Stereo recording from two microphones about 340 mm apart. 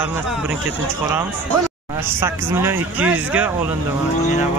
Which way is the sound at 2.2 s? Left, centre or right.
Centre.